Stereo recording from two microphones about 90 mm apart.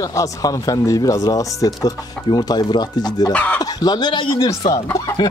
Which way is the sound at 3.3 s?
15° left (ahead or behind).